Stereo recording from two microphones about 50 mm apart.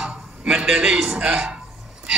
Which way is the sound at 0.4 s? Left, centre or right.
Right.